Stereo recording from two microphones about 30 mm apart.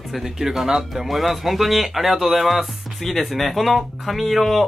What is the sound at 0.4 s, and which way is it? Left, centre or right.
Speech, centre.